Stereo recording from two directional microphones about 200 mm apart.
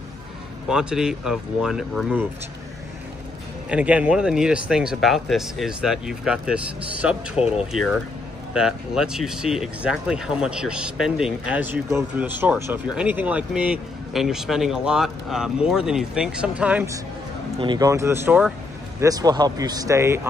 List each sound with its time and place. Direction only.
0.7 s speech: 5° right (ahead or behind)
3.6 s speech: 5° right (ahead or behind)
8.5 s speech: 5° right (ahead or behind)